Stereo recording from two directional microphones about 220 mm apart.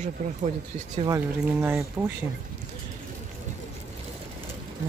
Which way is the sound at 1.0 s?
10° right (ahead or behind).